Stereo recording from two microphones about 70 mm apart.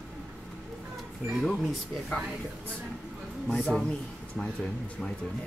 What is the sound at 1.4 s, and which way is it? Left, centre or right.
Speech, centre.